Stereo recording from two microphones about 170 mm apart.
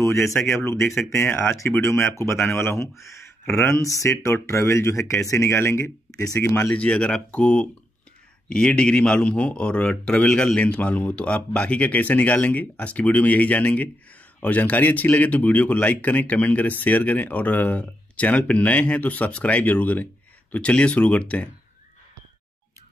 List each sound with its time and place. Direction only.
0.0 s speech: 15° left (ahead or behind)